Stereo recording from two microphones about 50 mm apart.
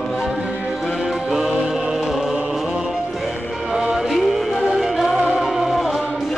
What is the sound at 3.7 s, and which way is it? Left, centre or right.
Music, centre.